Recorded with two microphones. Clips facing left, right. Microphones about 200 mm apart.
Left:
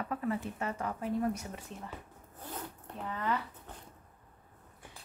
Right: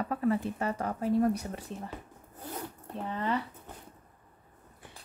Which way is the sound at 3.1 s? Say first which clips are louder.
Right 2 dB; 30° right (ahead or behind).